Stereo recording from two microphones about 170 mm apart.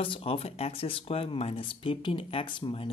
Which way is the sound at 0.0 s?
35° left (ahead or behind).